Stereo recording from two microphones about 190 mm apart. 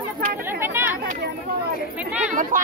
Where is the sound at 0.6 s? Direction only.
10° right (ahead or behind).